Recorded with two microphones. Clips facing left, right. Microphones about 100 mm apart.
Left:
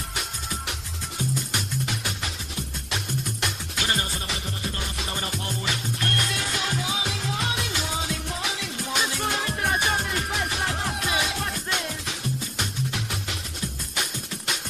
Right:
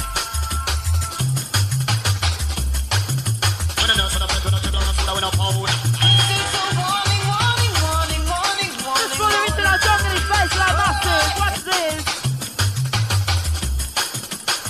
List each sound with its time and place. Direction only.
0.1 s music: 65° right (ahead or behind)